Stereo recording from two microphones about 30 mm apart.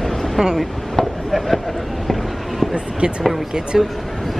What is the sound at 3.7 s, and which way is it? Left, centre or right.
Speech, centre.